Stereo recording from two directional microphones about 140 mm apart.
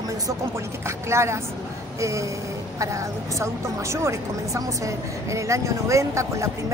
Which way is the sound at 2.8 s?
20° right (ahead or behind).